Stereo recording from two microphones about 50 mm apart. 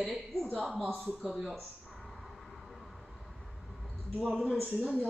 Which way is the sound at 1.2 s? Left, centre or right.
Centre.